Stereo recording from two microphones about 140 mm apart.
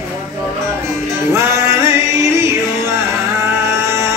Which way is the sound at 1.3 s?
20° right (ahead or behind).